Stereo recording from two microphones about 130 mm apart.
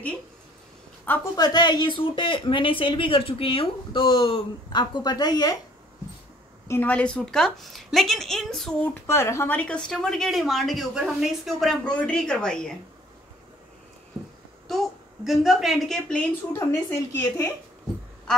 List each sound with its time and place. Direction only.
1.3 s speech: 30° left (ahead or behind)
6.7 s speech: 15° left (ahead or behind)
9.0 s speech: 20° left (ahead or behind)
14.7 s a woman's voice: centre (ahead or behind)
16.5 s speech: 20° left (ahead or behind)